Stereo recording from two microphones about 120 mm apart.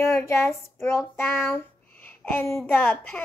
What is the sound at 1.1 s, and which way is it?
Child singing, 20° left (ahead or behind).